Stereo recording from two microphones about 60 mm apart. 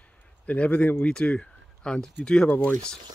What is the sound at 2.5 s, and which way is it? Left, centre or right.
Speech, left.